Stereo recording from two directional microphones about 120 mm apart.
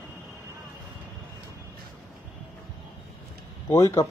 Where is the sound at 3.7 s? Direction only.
25° left (ahead or behind).